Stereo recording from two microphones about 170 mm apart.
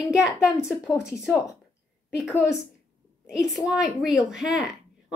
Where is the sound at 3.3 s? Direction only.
5° right (ahead or behind).